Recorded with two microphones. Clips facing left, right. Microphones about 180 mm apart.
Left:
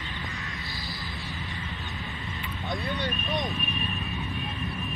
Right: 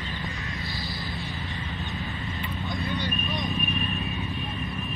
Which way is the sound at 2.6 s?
Centre (ahead or behind).